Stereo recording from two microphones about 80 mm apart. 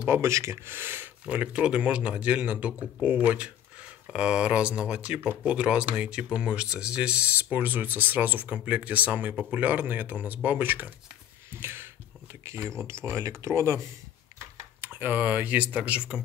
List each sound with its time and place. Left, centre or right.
0.0 s speech: right
1.2 s speech: centre
11.5 s a sound: right
12.6 s speech: right
14.8 s speech: right